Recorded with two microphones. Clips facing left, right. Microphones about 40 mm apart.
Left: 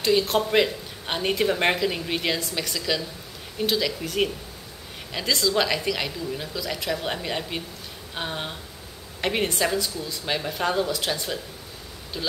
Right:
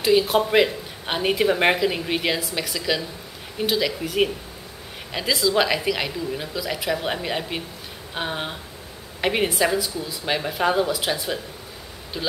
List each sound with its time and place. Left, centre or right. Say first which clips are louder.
0.0 s speech: right 3 dB; centre